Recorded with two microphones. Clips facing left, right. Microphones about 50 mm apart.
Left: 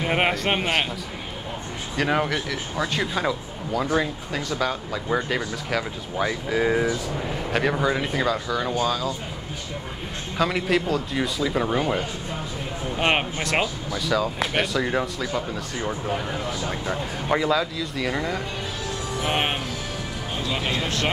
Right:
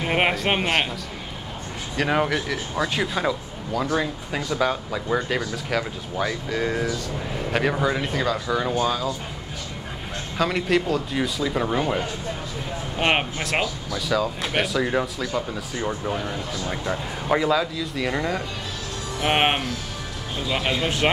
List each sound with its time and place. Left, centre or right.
0.0 s speech: centre
2.0 s speech: centre
4.3 s speech: centre
5.4 s speech: centre
7.5 s speech: centre
8.5 s speech: centre
10.3 s speech: centre
13.0 s speech: centre
19.2 s speech: right
20.8 s speech: centre